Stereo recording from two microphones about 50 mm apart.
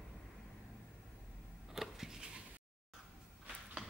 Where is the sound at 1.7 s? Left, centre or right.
Centre.